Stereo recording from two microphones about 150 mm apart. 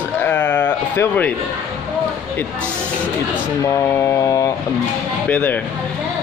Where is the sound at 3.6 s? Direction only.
20° left (ahead or behind).